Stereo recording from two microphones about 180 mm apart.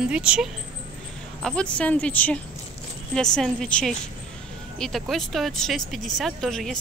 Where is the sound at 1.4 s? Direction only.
5° left (ahead or behind).